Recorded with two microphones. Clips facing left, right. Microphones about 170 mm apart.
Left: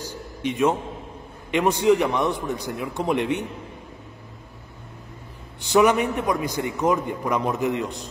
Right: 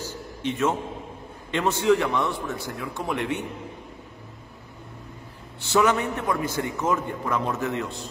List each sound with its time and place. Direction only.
0.1 s a sound: 15° left (ahead or behind)
1.5 s a man's voice: 15° left (ahead or behind)
5.6 s a man's voice: 15° left (ahead or behind)